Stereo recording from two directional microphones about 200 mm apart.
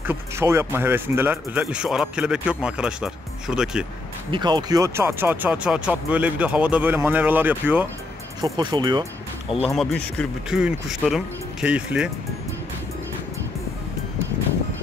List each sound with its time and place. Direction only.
0.0 s speech: 10° right (ahead or behind)
4.3 s speech: 20° right (ahead or behind)
8.4 s speech: 20° right (ahead or behind)
9.8 s speech: centre (ahead or behind)